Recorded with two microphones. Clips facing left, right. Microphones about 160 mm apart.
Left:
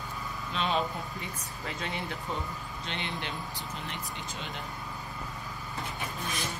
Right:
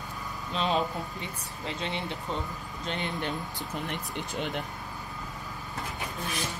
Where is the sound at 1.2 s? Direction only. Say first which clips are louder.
Right 2 dB; 25° right (ahead or behind).